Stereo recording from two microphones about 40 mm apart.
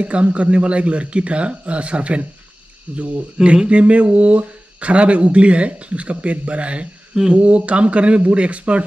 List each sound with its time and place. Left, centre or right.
0.0 s speech: right
3.6 s speech: right